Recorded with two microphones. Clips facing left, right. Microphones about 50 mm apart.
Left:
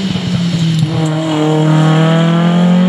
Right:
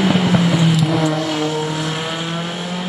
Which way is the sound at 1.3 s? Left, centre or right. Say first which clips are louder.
Left 8 dB; left.